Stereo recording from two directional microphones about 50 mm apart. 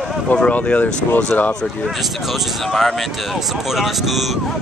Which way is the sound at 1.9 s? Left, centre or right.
Centre.